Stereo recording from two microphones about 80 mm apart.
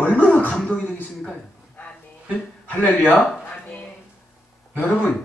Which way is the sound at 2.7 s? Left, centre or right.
Left.